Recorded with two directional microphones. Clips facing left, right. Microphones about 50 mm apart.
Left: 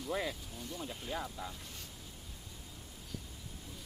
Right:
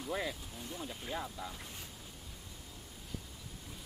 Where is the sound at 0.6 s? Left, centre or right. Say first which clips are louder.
Even; centre.